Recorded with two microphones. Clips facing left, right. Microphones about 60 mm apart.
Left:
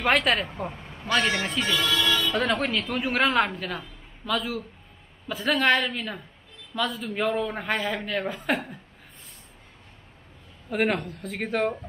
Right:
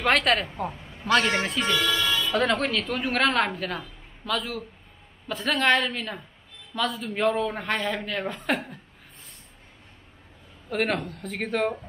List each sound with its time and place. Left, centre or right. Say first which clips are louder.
0.0 s a woman's voice: even; centre
10.7 s a woman's voice: left 1 dB; centre